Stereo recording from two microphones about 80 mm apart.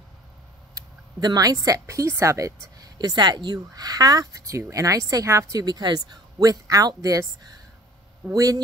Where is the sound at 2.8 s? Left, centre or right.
Right.